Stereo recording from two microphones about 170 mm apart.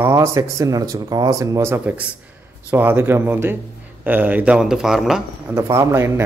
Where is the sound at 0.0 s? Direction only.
15° right (ahead or behind).